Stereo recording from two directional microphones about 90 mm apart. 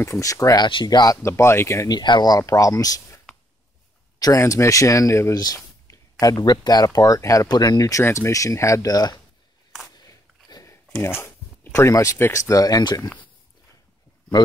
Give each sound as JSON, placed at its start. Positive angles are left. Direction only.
{"t": 0.0, "sound": "speech", "side_deg": 35}
{"t": 0.6, "sound": "speech", "side_deg": 70}
{"t": 0.8, "sound": "speech", "side_deg": 45}
{"t": 1.2, "sound": "speech", "side_deg": 30}
{"t": 1.9, "sound": "speech", "side_deg": 55}
{"t": 4.2, "sound": "speech", "side_deg": 40}
{"t": 5.3, "sound": "speech", "side_deg": 45}
{"t": 7.4, "sound": "speech", "side_deg": 50}
{"t": 8.0, "sound": "speech", "side_deg": 30}
{"t": 9.8, "sound": "a sound", "side_deg": 45}
{"t": 11.0, "sound": "speech", "side_deg": 25}